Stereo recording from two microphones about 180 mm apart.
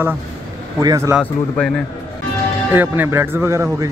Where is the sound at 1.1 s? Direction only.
5° left (ahead or behind).